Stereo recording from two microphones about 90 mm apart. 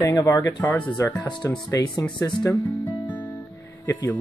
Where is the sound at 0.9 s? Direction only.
30° left (ahead or behind).